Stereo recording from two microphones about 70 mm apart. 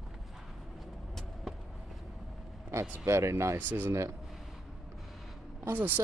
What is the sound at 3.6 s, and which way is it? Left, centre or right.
Speech, right.